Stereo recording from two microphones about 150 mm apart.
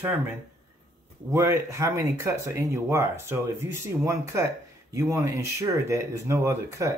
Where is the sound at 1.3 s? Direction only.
20° right (ahead or behind).